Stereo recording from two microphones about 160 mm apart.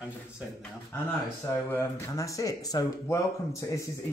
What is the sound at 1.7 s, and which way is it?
Speech, 20° left (ahead or behind).